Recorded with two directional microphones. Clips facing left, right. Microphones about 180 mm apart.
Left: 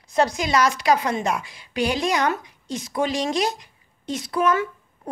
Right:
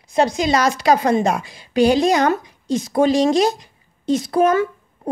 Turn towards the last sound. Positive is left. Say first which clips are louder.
# right 6 dB
turn(degrees=-35)  # may be behind; listen again after turning